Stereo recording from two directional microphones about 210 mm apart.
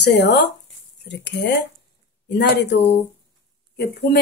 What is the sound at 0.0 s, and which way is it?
A woman's voice, 55° left (ahead or behind).